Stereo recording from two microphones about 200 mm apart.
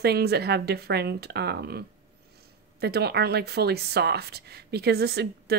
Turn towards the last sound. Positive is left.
turn(degrees=-55)  # may be behind; listen again after turning